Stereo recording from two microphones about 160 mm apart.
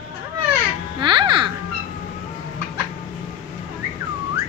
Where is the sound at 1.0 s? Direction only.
30° right (ahead or behind).